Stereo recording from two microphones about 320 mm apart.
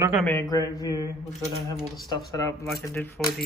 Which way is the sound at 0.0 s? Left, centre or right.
Centre.